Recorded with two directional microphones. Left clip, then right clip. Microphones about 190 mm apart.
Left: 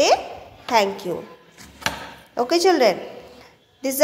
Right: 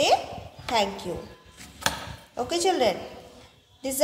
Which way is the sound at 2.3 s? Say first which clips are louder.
Left 7 dB; 40° left (ahead or behind).